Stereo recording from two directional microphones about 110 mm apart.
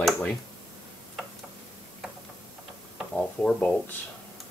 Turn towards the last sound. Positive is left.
turn(degrees=10)  # may be behind; listen again after turning